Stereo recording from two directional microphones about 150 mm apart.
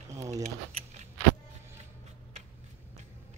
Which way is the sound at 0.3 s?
45° right (ahead or behind).